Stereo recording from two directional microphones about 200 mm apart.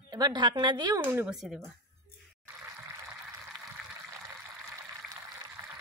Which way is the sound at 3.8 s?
5° right (ahead or behind).